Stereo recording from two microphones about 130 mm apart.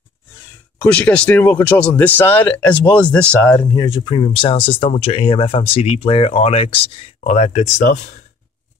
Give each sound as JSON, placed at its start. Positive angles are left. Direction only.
{"t": 0.7, "sound": "speech", "side_deg": 10}
{"t": 3.7, "sound": "speech", "side_deg": 35}
{"t": 7.2, "sound": "speech", "side_deg": 60}